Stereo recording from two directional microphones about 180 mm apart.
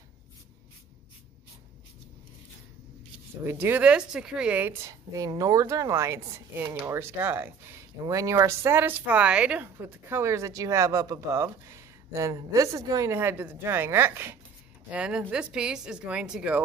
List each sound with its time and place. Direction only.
3.4 s a woman's voice: 10° right (ahead or behind)